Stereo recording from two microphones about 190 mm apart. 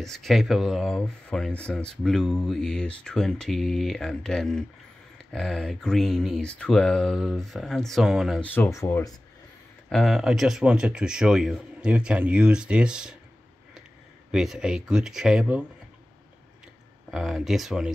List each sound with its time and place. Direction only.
0.0 s speech: centre (ahead or behind)
9.8 s speech: centre (ahead or behind)
14.3 s speech: 5° right (ahead or behind)
17.1 s speech: centre (ahead or behind)